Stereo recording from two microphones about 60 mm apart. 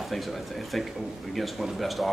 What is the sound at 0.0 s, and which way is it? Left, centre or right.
A man's voice, centre.